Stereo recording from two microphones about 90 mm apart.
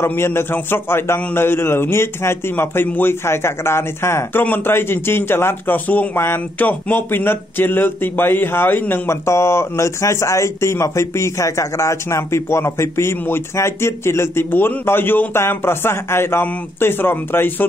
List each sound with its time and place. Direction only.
0.0 s a man's voice: 25° left (ahead or behind)